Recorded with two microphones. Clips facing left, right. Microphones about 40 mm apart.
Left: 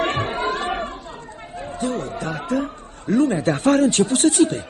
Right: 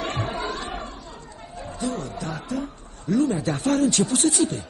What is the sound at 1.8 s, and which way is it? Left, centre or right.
Speech, left.